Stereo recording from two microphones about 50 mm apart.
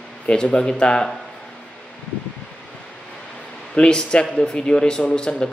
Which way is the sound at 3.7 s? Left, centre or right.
Centre.